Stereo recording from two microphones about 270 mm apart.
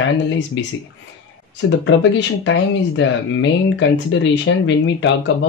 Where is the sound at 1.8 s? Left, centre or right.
Left.